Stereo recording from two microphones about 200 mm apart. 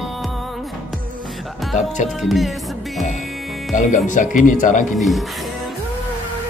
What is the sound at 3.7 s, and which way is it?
Speech, 40° left (ahead or behind).